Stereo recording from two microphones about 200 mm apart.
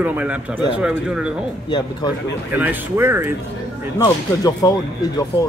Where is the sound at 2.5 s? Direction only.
10° right (ahead or behind).